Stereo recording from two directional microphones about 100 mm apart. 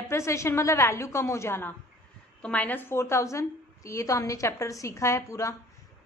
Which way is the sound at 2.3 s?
15° left (ahead or behind).